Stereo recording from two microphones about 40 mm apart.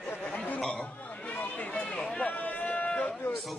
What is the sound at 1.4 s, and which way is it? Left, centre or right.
Run, left.